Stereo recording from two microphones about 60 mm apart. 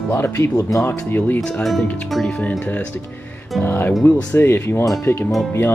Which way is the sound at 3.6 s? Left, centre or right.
Left.